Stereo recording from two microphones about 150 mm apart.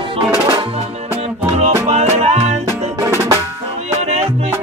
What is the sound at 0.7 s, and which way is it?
Music, 45° right (ahead or behind).